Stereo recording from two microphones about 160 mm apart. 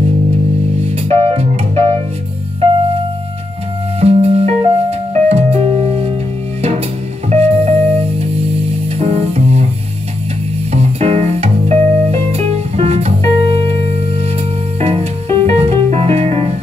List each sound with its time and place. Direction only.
1.0 s music: 40° right (ahead or behind)
4.0 s music: 40° right (ahead or behind)
7.2 s music: 40° right (ahead or behind)
10.7 s music: 40° right (ahead or behind)
14.8 s music: 40° right (ahead or behind)